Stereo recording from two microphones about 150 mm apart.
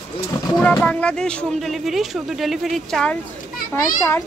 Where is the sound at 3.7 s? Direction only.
15° left (ahead or behind).